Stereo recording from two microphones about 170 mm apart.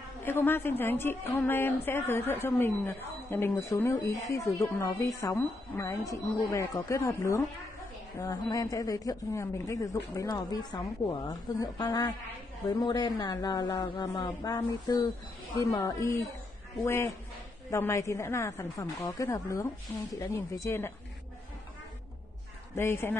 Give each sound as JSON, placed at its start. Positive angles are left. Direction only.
{"t": 0.2, "sound": "a woman's voice", "side_deg": 15}
{"t": 22.8, "sound": "a woman's voice", "side_deg": 15}